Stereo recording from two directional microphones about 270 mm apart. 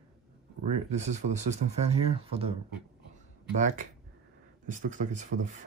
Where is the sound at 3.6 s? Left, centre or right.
Right.